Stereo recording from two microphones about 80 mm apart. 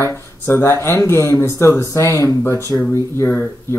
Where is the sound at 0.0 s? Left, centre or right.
Left.